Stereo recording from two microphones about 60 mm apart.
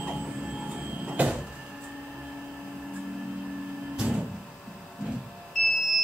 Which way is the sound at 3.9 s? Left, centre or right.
Centre.